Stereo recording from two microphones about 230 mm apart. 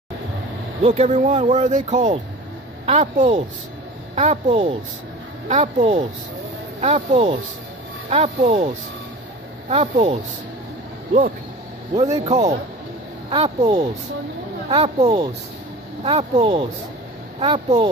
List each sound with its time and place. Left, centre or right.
0.8 s a man's voice: right
11.9 s a man's voice: right